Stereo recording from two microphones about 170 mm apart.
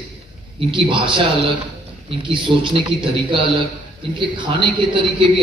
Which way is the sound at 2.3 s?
30° right (ahead or behind).